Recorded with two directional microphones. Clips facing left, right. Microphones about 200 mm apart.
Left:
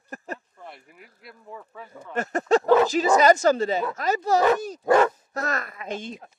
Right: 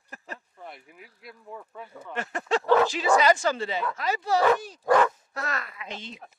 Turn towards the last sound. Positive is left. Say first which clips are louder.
# left 7 dB
turn(degrees=50)  # may be behind; listen again after turning